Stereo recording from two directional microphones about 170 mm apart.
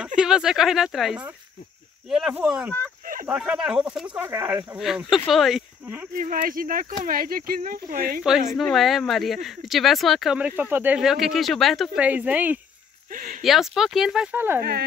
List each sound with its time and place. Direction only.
0.0 s speech: 5° right (ahead or behind)
4.7 s speech: centre (ahead or behind)
6.1 s speech: 55° right (ahead or behind)
8.5 s speech: centre (ahead or behind)
13.1 s speech: 55° right (ahead or behind)
13.4 s speech: centre (ahead or behind)